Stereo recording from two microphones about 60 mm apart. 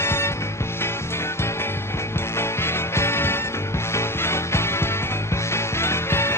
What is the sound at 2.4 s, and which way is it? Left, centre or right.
Music, left.